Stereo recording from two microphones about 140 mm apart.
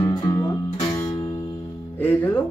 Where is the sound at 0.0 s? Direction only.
30° left (ahead or behind).